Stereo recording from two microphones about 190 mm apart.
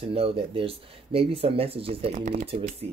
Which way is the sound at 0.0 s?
30° right (ahead or behind).